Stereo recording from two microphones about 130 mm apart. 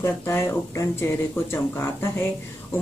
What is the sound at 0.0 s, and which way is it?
Speech, 20° left (ahead or behind).